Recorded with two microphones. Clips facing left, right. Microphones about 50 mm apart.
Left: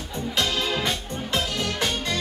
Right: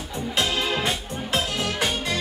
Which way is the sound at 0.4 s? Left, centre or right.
Centre.